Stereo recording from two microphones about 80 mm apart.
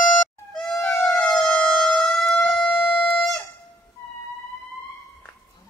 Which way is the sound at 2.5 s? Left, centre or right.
Centre.